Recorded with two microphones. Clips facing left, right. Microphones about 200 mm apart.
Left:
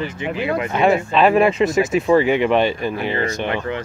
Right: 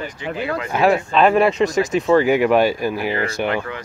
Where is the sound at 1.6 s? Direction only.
20° left (ahead or behind).